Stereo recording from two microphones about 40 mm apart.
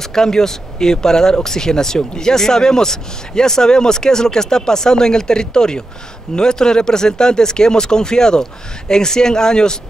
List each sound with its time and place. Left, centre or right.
0.0 s speech: centre